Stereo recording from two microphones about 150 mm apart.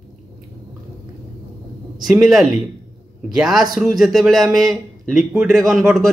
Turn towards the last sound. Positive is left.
turn(degrees=0)  # may be behind; listen again after turning